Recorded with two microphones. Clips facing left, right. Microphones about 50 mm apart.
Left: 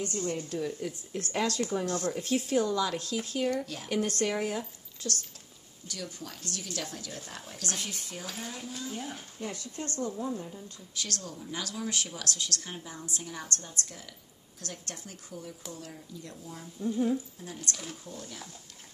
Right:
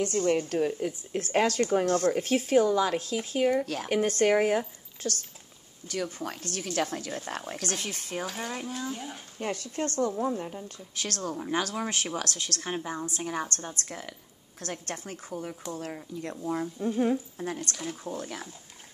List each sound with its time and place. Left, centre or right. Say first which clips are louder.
0.0 s a woman's voice: right 8 dB; right
2.6 s a woman's voice: right 5 dB; right
3.6 s speech: right 7 dB; right
4.2 s a woman's voice: right 7 dB; right
7.6 s a woman's voice: right 3 dB; right
8.9 s speech: even; centre
9.4 s a woman's voice: right 8 dB; right
11.3 s speech: right 9 dB; right
11.6 s a woman's voice: right 4 dB; right